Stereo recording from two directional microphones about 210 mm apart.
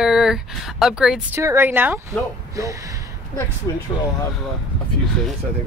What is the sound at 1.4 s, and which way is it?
Speech, 15° right (ahead or behind).